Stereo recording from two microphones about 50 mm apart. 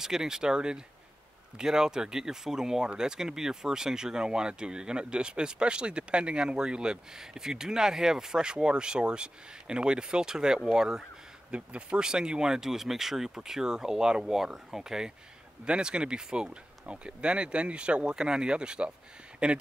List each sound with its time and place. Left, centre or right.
0.0 s speech: centre